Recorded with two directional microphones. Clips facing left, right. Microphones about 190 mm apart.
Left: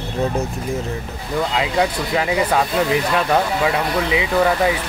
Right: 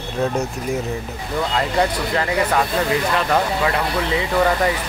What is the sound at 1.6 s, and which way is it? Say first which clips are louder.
Speech: right 1 dB; 10° left (ahead or behind).